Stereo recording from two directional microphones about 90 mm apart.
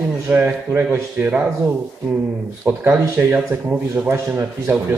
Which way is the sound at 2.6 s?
25° right (ahead or behind).